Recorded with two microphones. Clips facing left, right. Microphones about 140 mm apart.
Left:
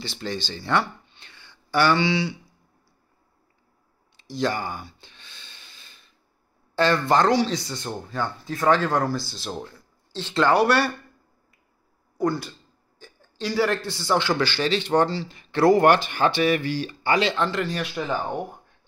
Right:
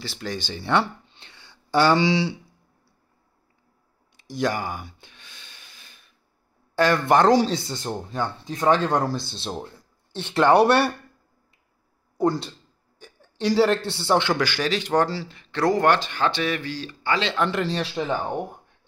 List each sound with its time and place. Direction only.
0.0 s speech: 5° right (ahead or behind)
0.4 s speech: 15° right (ahead or behind); by 2.3 s 35° right (ahead or behind)
4.3 s gasp: 15° right (ahead or behind)
6.7 s a man's voice: 10° right (ahead or behind)
7.2 s speech: 40° right (ahead or behind); by 10.5 s 20° right (ahead or behind)
12.2 s speech: 25° right (ahead or behind)
13.7 s a man's voice: 65° right (ahead or behind)
14.0 s speech: 20° right (ahead or behind)
14.3 s speech: 10° right (ahead or behind); by 17.3 s 15° left (ahead or behind)
17.5 s speech: 25° right (ahead or behind)